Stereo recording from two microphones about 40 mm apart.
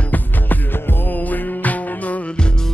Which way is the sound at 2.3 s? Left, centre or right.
Left.